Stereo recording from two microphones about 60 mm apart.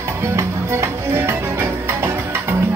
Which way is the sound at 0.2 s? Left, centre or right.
Right.